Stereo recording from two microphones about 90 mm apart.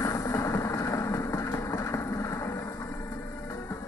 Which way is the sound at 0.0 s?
35° left (ahead or behind).